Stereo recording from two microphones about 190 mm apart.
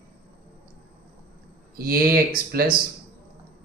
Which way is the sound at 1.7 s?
50° right (ahead or behind).